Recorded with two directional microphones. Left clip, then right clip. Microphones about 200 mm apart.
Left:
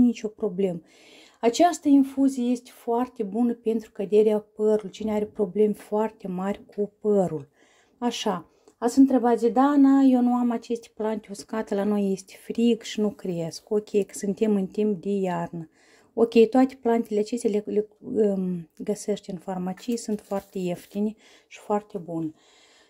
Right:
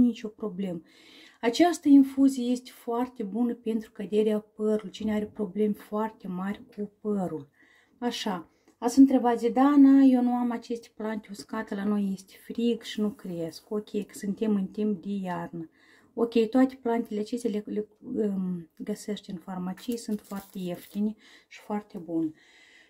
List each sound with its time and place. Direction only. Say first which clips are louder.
0.0 s speech: left 4 dB; 30° left (ahead or behind)